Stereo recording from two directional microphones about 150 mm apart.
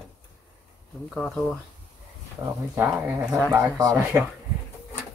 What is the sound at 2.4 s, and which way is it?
Speech, 20° right (ahead or behind).